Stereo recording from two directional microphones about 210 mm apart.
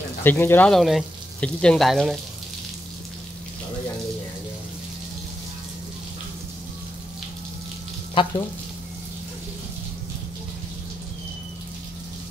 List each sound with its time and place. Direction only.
0.2 s speech: 10° left (ahead or behind)
8.1 s frying: 25° left (ahead or behind)